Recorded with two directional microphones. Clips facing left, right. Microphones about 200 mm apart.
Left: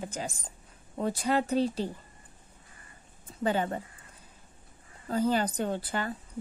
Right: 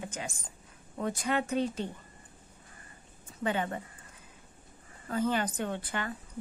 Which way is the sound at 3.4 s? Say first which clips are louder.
Left 3 dB; 35° left (ahead or behind).